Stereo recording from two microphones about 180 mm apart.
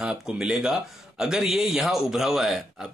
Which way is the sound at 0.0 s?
5° right (ahead or behind).